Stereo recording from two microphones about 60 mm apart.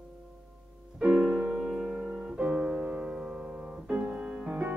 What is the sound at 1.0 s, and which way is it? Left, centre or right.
Music, right.